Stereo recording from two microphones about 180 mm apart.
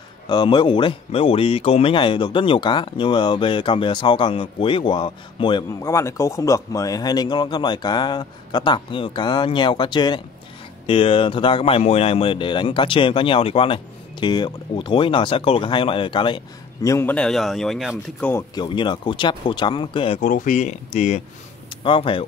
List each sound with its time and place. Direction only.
0.3 s speech: 25° left (ahead or behind); by 18.3 s centre (ahead or behind)
18.3 s speech: 25° left (ahead or behind)
20.2 s speech: 45° left (ahead or behind)
21.6 s speech: 30° left (ahead or behind)